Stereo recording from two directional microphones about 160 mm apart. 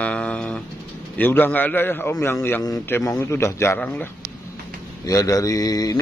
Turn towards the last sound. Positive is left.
turn(degrees=25)  # may be behind; listen again after turning